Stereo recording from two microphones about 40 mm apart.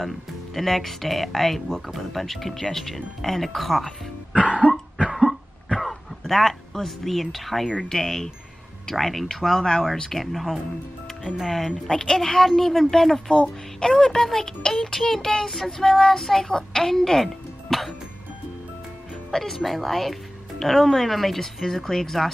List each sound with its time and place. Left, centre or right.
0.6 s a woman's voice: centre
5.2 s throat clearing: centre
7.9 s a woman's voice: centre
13.3 s speech: left; by 17.9 s centre
19.3 s a woman's voice: centre